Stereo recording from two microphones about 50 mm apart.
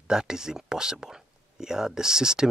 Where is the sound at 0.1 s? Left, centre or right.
Centre.